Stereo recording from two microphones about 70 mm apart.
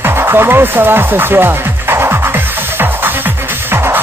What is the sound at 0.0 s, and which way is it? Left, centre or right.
Music, right.